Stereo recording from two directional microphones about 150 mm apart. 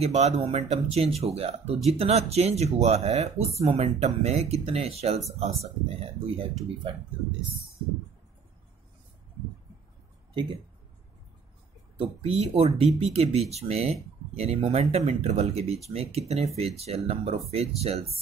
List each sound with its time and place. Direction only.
0.0 s speech: 45° right (ahead or behind)
12.0 s speech: 40° right (ahead or behind)